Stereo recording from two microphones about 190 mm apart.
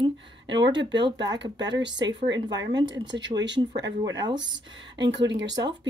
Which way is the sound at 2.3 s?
20° right (ahead or behind).